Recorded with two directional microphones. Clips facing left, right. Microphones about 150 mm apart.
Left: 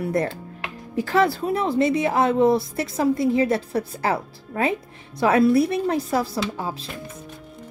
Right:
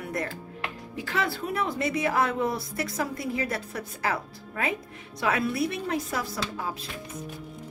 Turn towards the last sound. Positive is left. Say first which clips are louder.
# left 5 dB
turn(degrees=30)  # may be behind; listen again after turning